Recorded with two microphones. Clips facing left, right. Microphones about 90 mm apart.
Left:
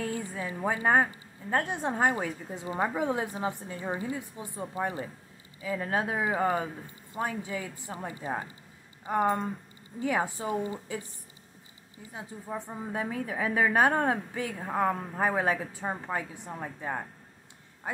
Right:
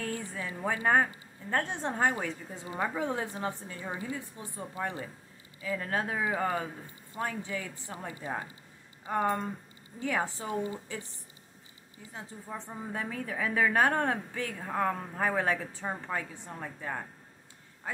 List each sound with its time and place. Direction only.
0.0 s a woman's voice: 15° left (ahead or behind)
12.1 s a woman's voice: 10° left (ahead or behind)